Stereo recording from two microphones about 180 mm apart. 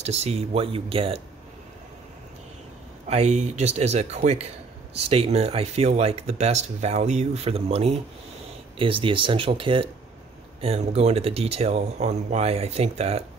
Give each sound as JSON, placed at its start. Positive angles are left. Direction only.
{"t": 0.0, "sound": "speech", "side_deg": -35}
{"t": 3.1, "sound": "speech", "side_deg": -35}